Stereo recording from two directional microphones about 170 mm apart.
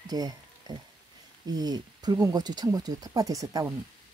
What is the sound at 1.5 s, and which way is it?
Speech, 25° right (ahead or behind).